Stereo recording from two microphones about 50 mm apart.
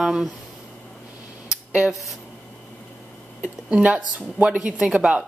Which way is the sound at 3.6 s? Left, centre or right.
Right.